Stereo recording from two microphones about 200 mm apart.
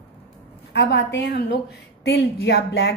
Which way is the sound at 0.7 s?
65° left (ahead or behind).